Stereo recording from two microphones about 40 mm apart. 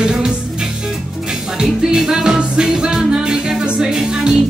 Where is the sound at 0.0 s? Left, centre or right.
Centre.